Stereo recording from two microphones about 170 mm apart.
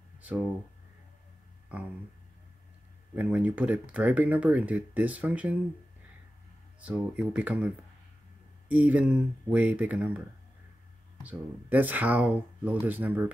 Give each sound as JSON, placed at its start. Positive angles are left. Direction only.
{"t": 3.2, "sound": "speech", "side_deg": -10}
{"t": 6.8, "sound": "speech", "side_deg": -5}
{"t": 11.2, "sound": "speech", "side_deg": -10}